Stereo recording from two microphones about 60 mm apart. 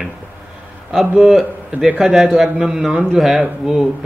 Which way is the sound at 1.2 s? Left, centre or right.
Centre.